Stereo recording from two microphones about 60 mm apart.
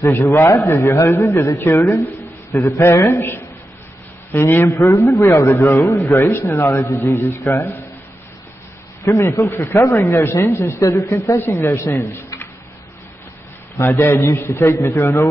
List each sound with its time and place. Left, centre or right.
0.0 s speech: left
4.3 s speech: left
4.6 s speech: left
9.0 s speech: left
11.6 s speech: left
13.7 s speech: left